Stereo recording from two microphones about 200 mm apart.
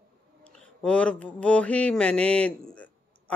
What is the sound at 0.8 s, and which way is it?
Mantra, 5° left (ahead or behind).